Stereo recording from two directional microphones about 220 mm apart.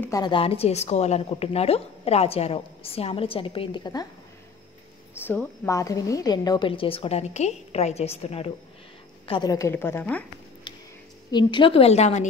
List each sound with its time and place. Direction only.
0.0 s a woman's voice: 15° left (ahead or behind)
5.2 s a woman's voice: 10° left (ahead or behind); by 8.5 s 30° left (ahead or behind)
9.3 s a woman's voice: 15° left (ahead or behind)
11.3 s a woman's voice: 20° left (ahead or behind)